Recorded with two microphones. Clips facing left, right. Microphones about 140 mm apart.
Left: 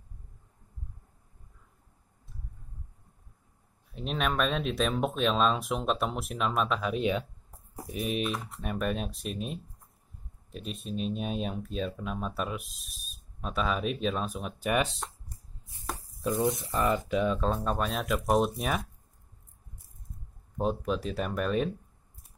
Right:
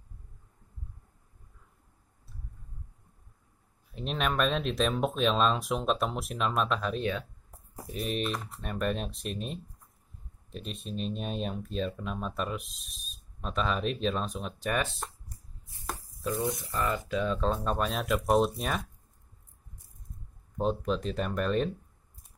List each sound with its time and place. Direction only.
3.9 s speech: centre (ahead or behind)
14.7 s speech: 15° left (ahead or behind)
16.3 s speech: 25° left (ahead or behind); by 18.8 s centre (ahead or behind)
20.5 s speech: 5° left (ahead or behind)